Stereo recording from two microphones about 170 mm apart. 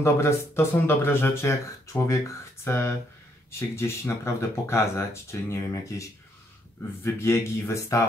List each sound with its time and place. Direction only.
0.0 s speech: 15° left (ahead or behind)